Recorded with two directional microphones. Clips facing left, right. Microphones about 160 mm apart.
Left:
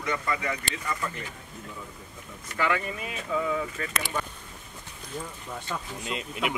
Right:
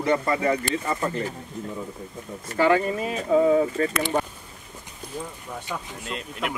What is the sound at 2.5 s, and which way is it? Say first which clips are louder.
Speech: right 8 dB; 35° right (ahead or behind).